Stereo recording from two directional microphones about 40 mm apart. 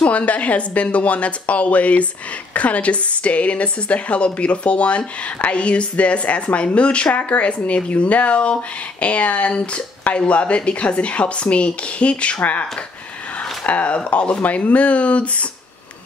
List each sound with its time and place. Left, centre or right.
0.0 s a woman's voice: left
12.4 s a woman's voice: left
13.7 s a woman's voice: left